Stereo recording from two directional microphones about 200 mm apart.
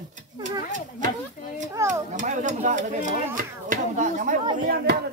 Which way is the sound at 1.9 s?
40° right (ahead or behind).